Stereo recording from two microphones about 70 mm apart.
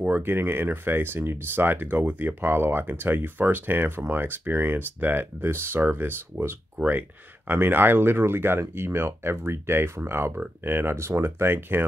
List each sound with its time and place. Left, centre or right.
0.0 s speech: right